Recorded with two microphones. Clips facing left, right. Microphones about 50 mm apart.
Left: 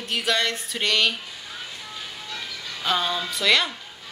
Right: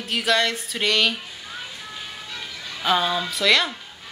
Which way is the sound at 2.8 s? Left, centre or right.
Centre.